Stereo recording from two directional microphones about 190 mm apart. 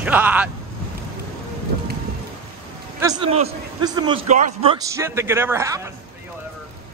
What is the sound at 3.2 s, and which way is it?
A man's voice, 30° right (ahead or behind).